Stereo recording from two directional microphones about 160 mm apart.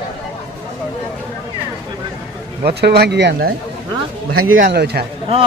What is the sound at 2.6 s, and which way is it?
Speech, 90° right.